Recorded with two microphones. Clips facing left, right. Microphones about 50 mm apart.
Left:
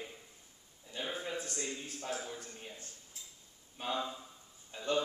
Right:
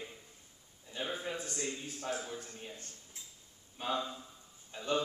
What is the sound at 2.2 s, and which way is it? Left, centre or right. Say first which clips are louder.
Speech: right 1 dB; centre.